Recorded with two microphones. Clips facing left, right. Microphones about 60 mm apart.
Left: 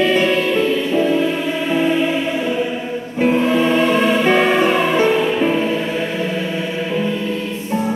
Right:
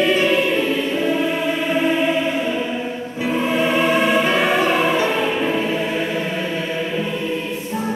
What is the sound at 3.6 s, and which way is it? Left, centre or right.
Music, centre.